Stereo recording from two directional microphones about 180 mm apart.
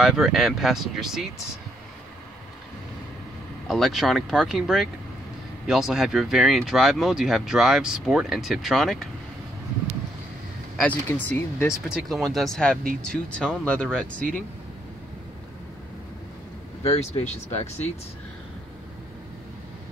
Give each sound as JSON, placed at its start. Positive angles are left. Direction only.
{"t": 0.0, "sound": "speech", "side_deg": 0}
{"t": 3.6, "sound": "speech", "side_deg": 0}
{"t": 10.8, "sound": "speech", "side_deg": 10}
{"t": 11.9, "sound": "speech", "side_deg": 0}
{"t": 16.8, "sound": "speech", "side_deg": 35}